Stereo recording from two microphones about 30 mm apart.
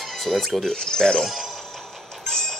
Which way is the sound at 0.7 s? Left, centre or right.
Left.